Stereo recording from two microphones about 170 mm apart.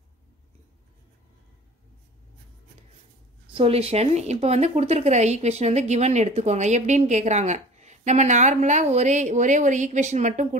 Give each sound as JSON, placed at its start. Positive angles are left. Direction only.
{"t": 3.5, "sound": "speech", "side_deg": -35}